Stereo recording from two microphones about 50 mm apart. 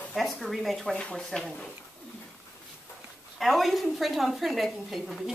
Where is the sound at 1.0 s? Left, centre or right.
Centre.